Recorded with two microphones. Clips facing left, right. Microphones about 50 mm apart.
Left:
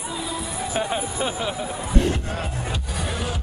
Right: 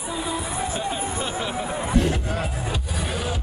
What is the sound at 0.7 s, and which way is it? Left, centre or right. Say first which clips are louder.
Speech: left 2 dB; left.